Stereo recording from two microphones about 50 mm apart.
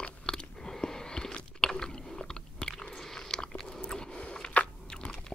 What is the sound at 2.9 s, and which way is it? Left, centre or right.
Biting, centre.